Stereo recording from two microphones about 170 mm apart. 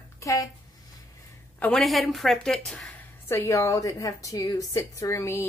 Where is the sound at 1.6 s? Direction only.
5° left (ahead or behind).